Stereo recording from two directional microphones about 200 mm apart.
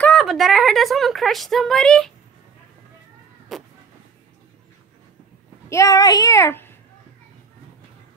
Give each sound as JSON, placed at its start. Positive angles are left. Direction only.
{"t": 0.0, "sound": "a woman's voice", "side_deg": 0}
{"t": 3.5, "sound": "a sound", "side_deg": 0}
{"t": 5.7, "sound": "speech", "side_deg": 15}